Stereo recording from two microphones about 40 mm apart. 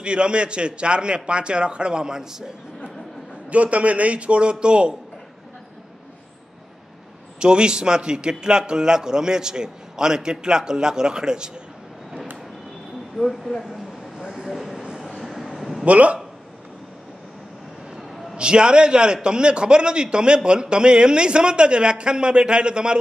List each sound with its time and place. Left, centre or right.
0.0 s a man's voice: right
3.4 s a man's voice: right
7.3 s a man's voice: right
13.2 s speech: centre
14.1 s vehicle: centre
15.2 s a sound: centre
15.8 s speech: right
17.9 s a sound: centre
18.3 s a man's voice: right